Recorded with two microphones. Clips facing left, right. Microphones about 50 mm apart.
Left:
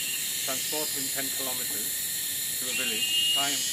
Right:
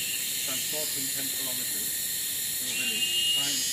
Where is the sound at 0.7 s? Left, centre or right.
Left.